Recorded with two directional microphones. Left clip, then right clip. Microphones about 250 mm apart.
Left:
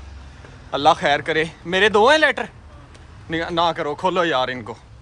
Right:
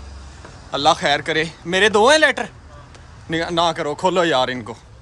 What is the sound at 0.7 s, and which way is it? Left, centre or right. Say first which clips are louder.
Speech: even; centre.